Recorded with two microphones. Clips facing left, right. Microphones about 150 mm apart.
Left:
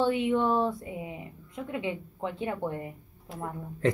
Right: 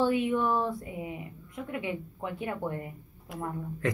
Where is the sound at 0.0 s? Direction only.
20° left (ahead or behind).